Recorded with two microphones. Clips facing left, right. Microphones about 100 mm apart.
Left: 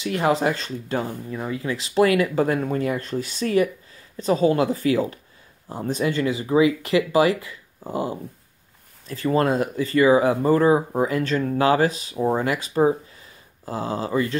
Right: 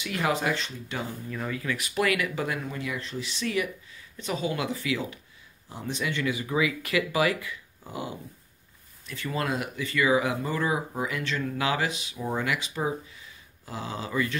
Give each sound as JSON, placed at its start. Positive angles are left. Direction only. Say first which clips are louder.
{"t": 0.0, "sound": "speech", "louder": "left 7 dB", "side_deg": 35}
{"t": 1.3, "sound": "speech", "louder": "left 4 dB", "side_deg": 25}